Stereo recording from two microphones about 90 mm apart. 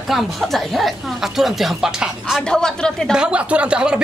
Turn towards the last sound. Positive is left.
turn(degrees=-10)  # may be behind; listen again after turning